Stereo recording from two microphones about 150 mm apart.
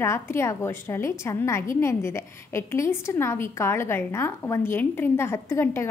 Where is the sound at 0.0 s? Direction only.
20° left (ahead or behind).